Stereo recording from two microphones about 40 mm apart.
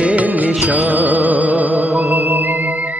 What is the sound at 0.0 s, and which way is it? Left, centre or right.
Music, right.